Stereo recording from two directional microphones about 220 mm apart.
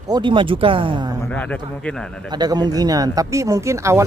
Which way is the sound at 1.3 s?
5° left (ahead or behind).